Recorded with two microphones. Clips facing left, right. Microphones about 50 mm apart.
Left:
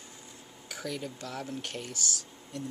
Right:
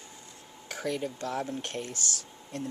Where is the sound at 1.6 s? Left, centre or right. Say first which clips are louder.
Right 2 dB; right.